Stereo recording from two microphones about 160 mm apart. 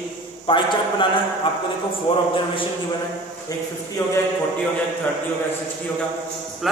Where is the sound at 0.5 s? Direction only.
30° left (ahead or behind).